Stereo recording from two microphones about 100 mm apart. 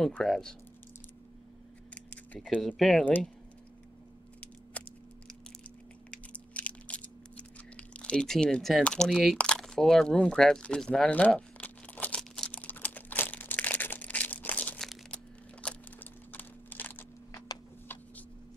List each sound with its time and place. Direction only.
0.0 s speech: 5° left (ahead or behind)
2.0 s a sound: 10° left (ahead or behind)
2.8 s speech: centre (ahead or behind)
4.7 s a sound: 15° left (ahead or behind)
6.0 s crunch: 15° left (ahead or behind)
8.8 s speech: 5° left (ahead or behind)
11.1 s crumpling: 15° left (ahead or behind)
14.8 s crumpling: centre (ahead or behind)
15.6 s a sound: 20° left (ahead or behind)